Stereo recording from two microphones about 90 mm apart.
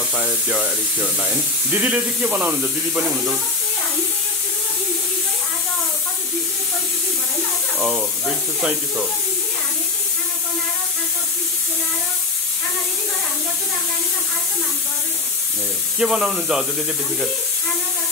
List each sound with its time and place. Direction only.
0.1 s speech: 10° right (ahead or behind)
16.0 s speech: 5° right (ahead or behind)